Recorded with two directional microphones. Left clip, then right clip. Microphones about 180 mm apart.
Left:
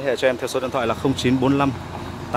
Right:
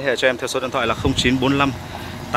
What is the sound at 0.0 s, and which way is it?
Speech, 5° left (ahead or behind).